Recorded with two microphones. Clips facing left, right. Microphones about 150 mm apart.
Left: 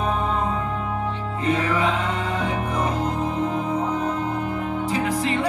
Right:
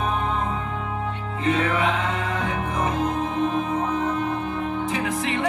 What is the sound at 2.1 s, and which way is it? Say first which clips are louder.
Music: left 1 dB; 25° left (ahead or behind).